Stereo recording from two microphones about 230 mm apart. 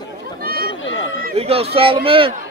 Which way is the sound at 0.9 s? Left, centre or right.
Left.